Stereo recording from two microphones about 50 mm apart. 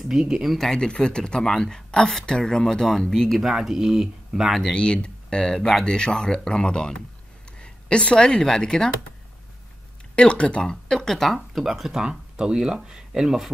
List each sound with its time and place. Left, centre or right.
0.1 s speech: centre
0.6 s speech: centre
4.7 s speech: centre
10.1 s speech: left
11.3 s speech: centre